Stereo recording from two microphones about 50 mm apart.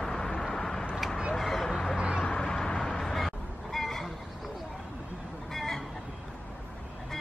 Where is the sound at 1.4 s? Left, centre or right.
Centre.